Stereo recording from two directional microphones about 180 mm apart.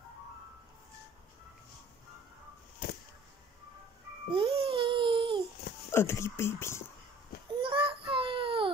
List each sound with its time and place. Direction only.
4.3 s music: 30° right (ahead or behind)
5.9 s speech: 15° left (ahead or behind)
7.6 s a sound: 30° right (ahead or behind)